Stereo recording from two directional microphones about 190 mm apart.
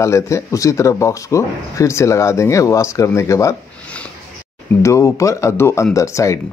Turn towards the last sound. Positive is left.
turn(degrees=15)  # may be behind; listen again after turning